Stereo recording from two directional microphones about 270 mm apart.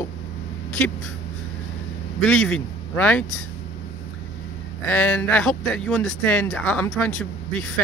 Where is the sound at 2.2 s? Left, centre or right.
Centre.